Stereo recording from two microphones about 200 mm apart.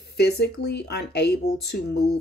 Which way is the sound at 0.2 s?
55° left (ahead or behind).